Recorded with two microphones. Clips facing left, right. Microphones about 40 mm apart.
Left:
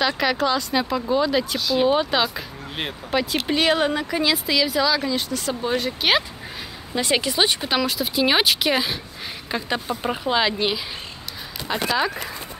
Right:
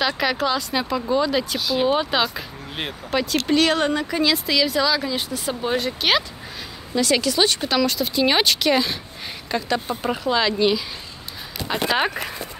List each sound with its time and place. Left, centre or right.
0.0 s speech: centre
5.1 s speech: centre
5.8 s speech: centre
7.0 s speech: left
11.7 s speech: centre